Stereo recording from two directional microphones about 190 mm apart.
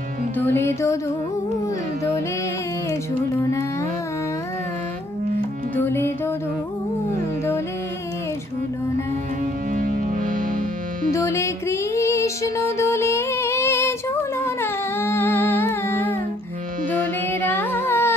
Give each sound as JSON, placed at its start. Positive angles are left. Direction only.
{"t": 0.4, "sound": "music", "side_deg": 10}
{"t": 5.8, "sound": "music", "side_deg": 10}
{"t": 9.8, "sound": "music", "side_deg": -45}
{"t": 11.1, "sound": "music", "side_deg": 15}
{"t": 14.4, "sound": "humming", "side_deg": 10}
{"t": 17.3, "sound": "carnatic music", "side_deg": 10}